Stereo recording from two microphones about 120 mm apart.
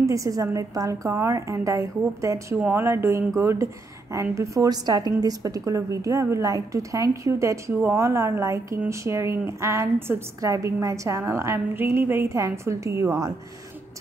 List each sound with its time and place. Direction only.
0.0 s a woman's voice: 25° right (ahead or behind)